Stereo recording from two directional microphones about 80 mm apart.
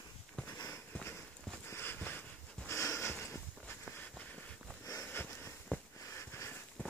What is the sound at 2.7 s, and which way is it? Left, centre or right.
Sniff, left.